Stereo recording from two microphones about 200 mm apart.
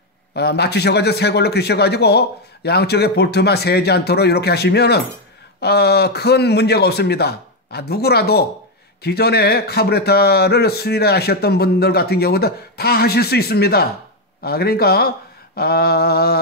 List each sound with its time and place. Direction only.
0.3 s a man's voice: 55° left (ahead or behind)